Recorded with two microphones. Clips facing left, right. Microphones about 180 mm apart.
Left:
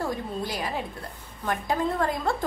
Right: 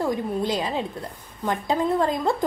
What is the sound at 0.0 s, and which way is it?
A woman's voice, 20° right (ahead or behind).